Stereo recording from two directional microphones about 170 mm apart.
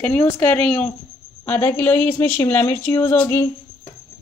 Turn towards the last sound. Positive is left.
turn(degrees=10)  # may be behind; listen again after turning